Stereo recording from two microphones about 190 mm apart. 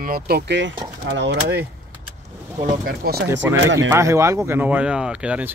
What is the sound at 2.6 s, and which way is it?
Speech, 50° right (ahead or behind).